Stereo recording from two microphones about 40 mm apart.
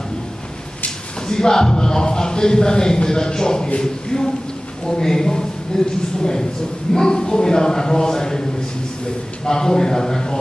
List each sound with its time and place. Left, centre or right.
0.8 s a woman's voice: centre